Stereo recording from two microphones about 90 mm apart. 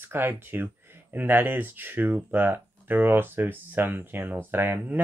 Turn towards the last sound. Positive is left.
turn(degrees=-20)  # may be behind; listen again after turning